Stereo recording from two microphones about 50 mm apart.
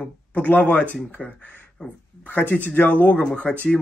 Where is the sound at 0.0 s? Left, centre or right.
Left.